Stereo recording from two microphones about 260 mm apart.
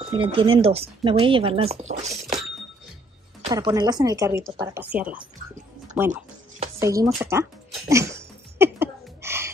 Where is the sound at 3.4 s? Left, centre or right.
Centre.